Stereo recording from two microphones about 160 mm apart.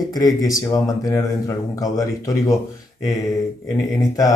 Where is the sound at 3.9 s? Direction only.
20° left (ahead or behind).